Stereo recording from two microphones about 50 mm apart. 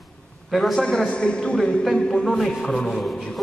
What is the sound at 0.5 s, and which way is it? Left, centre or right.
Speech, centre.